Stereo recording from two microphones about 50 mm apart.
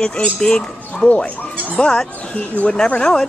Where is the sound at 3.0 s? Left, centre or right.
Centre.